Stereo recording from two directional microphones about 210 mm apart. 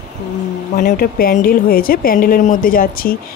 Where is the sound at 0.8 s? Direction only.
45° left (ahead or behind).